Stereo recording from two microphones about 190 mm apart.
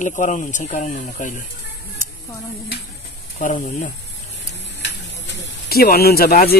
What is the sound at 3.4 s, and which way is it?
Speech, 40° left (ahead or behind).